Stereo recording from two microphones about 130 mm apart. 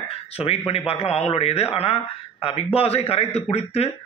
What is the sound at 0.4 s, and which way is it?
A man's voice, 50° left (ahead or behind).